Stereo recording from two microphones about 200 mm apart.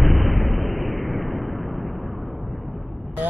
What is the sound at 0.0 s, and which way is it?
Explosion, centre (ahead or behind).